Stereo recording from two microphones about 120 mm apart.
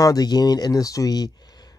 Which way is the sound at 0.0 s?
35° left (ahead or behind).